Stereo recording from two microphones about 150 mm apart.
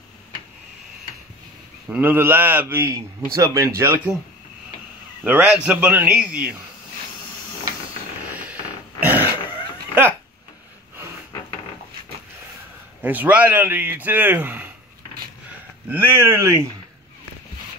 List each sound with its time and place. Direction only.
1.9 s a man's voice: 15° right (ahead or behind)
5.2 s a man's voice: 10° right (ahead or behind)
8.2 s a sound: 10° right (ahead or behind)
9.0 s dog: 10° right (ahead or behind)
13.0 s a man's voice: 10° right (ahead or behind)
15.9 s a man's voice: 15° right (ahead or behind)